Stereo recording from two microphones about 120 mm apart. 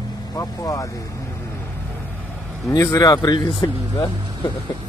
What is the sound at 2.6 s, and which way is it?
Speech, 25° left (ahead or behind).